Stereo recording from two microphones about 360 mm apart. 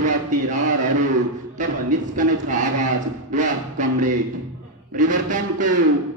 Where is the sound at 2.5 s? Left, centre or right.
Right.